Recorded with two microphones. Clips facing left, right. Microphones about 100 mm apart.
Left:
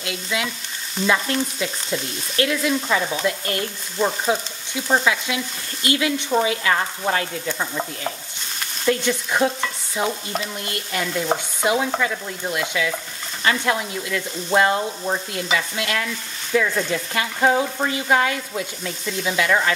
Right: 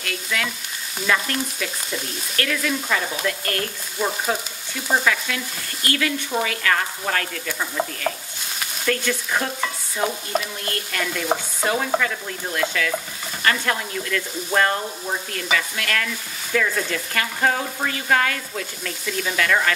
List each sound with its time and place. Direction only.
0.0 s frying: 20° left (ahead or behind)
8.8 s frying: 20° left (ahead or behind)